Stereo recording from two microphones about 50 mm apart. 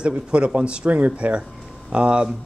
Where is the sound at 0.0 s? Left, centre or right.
Right.